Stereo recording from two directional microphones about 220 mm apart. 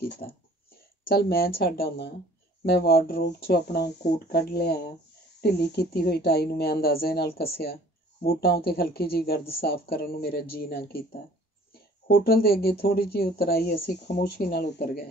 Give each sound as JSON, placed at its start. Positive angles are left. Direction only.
{"t": 0.2, "sound": "speech", "side_deg": 40}
{"t": 12.1, "sound": "speech", "side_deg": 45}